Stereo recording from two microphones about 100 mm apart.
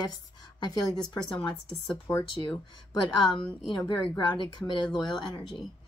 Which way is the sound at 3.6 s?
50° left (ahead or behind).